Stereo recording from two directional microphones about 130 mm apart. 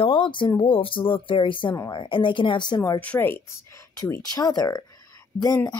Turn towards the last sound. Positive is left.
turn(degrees=30)  # may be behind; listen again after turning